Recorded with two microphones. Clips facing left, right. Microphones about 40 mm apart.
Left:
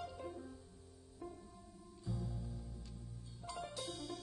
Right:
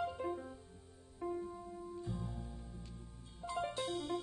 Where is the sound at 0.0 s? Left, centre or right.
Right.